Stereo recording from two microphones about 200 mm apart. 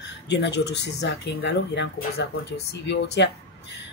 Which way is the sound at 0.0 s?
60° left (ahead or behind).